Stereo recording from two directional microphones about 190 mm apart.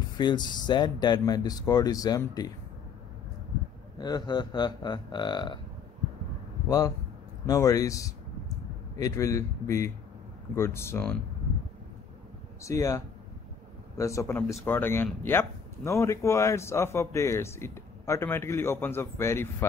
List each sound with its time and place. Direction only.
0.2 s speech: 25° left (ahead or behind)
4.0 s speech: 20° left (ahead or behind)
7.4 s a man's voice: 20° left (ahead or behind)
12.6 s a man's voice: 15° left (ahead or behind)